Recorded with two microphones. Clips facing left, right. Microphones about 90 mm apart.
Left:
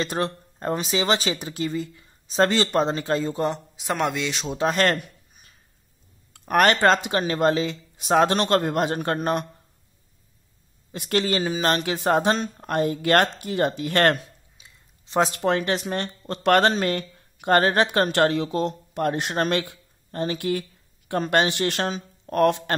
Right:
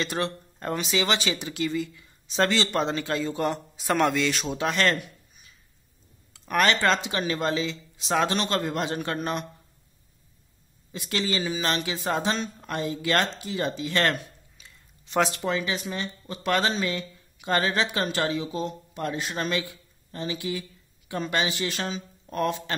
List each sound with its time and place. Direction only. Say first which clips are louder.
0.0 s speech: left 3 dB; 35° left (ahead or behind)
3.4 s a man's voice: left 1 dB; 25° left (ahead or behind)
3.8 s a man's voice: right 2 dB; 10° left (ahead or behind)
4.6 s a sound: left 5 dB; 40° left (ahead or behind)
6.3 s speech: left 4 dB; 50° left (ahead or behind)
10.9 s speech: left 5 dB; 45° left (ahead or behind)
14.6 s a sound: right 1 dB; 15° left (ahead or behind)
15.0 s speech: left 2 dB; 30° left (ahead or behind)
15.3 s speech: left 5 dB; 60° left (ahead or behind)